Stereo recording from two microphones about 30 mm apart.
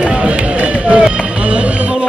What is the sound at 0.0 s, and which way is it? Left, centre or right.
Run, right.